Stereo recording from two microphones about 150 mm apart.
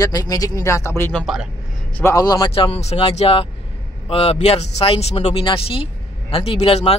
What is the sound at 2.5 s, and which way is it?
A man's voice, 40° left (ahead or behind).